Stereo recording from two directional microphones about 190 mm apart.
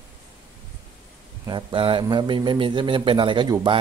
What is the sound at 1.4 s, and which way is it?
Speech, 25° right (ahead or behind).